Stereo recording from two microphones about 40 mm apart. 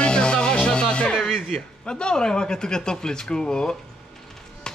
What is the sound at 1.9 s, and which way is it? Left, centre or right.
Speech, left.